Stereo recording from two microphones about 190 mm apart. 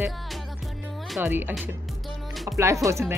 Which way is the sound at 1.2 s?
10° right (ahead or behind).